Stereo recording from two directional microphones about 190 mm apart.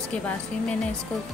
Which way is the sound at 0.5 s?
5° left (ahead or behind).